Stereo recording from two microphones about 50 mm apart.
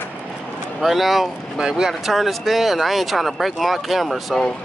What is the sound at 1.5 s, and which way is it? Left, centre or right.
Speech, centre.